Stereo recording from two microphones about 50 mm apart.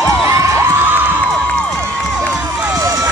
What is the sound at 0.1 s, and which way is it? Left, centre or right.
Cheering, right.